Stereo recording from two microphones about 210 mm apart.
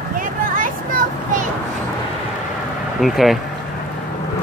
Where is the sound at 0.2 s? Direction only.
40° right (ahead or behind).